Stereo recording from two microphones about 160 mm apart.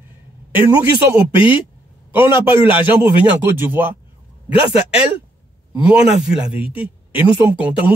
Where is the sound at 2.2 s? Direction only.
30° left (ahead or behind).